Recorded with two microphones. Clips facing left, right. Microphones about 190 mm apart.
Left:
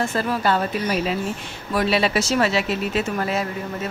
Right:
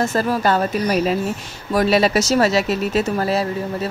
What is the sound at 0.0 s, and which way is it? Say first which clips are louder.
Speech: right 3 dB; 40° right (ahead or behind).